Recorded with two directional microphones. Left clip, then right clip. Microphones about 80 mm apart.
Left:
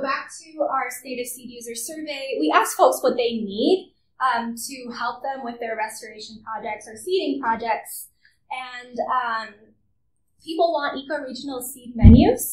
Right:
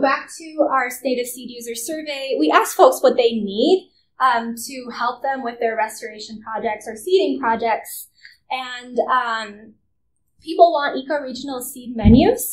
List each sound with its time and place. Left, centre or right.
0.0 s a woman's voice: right
0.7 s a woman's voice: right